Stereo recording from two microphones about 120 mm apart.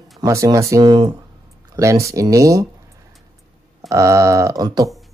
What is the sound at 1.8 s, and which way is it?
Speech, 25° right (ahead or behind).